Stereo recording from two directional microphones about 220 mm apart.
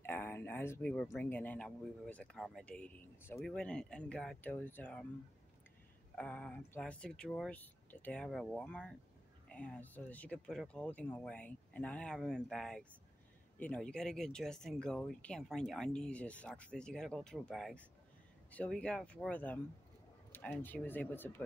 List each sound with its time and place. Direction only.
0.0 s speech: 10° left (ahead or behind)
6.1 s speech: 5° left (ahead or behind)